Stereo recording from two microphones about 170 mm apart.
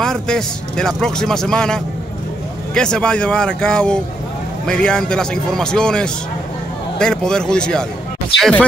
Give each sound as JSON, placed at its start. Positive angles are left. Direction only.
{"t": 0.0, "sound": "a man's voice", "side_deg": 5}